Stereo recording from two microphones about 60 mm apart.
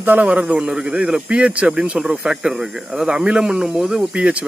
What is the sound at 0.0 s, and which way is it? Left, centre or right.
A man's voice, right.